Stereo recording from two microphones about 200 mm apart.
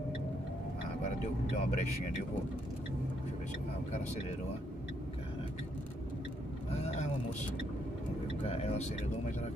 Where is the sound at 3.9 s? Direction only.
35° left (ahead or behind).